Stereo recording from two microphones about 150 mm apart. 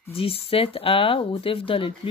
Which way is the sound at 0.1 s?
40° left (ahead or behind).